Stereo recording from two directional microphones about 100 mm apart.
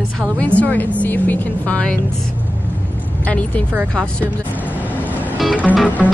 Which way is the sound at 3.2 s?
15° left (ahead or behind).